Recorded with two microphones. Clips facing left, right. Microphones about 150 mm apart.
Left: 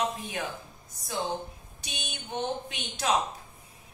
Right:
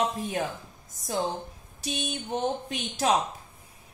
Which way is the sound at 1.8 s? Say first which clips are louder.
Right 9 dB; 35° right (ahead or behind).